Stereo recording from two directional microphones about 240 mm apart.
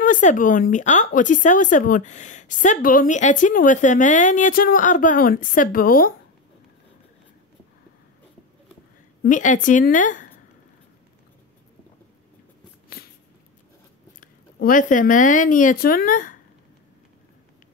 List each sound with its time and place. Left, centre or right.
0.0 s a woman's voice: left
9.2 s a woman's voice: left
14.2 s speech: left